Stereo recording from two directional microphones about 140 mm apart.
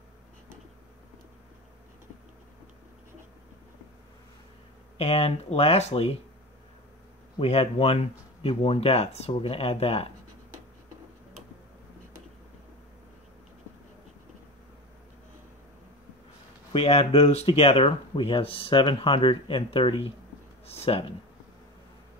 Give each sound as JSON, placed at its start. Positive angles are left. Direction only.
{"t": 4.9, "sound": "speech", "side_deg": 45}
{"t": 7.3, "sound": "speech", "side_deg": 45}
{"t": 16.7, "sound": "speech", "side_deg": 45}